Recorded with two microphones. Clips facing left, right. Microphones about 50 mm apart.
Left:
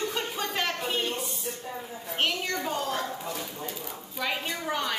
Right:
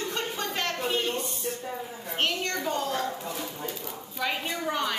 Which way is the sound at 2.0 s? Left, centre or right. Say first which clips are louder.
Even; centre.